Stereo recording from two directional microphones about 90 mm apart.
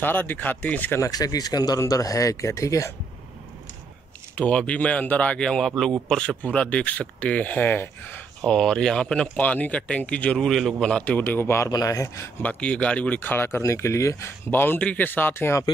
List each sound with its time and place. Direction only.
0.0 s speech: 20° left (ahead or behind)
0.9 s speech: 40° left (ahead or behind)
4.4 s speech: 15° left (ahead or behind)
8.5 s speech: 5° left (ahead or behind); by 11.7 s 30° left (ahead or behind)
11.7 s speech: 40° left (ahead or behind)
12.4 s speech: 15° left (ahead or behind)
13.6 s speech: 35° left (ahead or behind)